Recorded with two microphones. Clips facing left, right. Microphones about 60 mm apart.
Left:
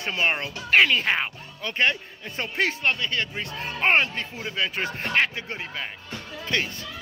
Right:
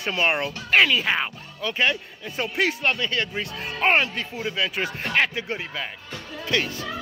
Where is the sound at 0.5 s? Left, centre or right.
Centre.